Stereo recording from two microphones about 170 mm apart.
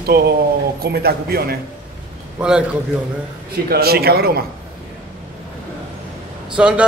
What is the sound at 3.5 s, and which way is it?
Speech, 65° right (ahead or behind).